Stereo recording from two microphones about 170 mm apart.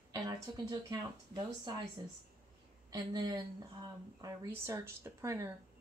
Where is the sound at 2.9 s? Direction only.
25° right (ahead or behind).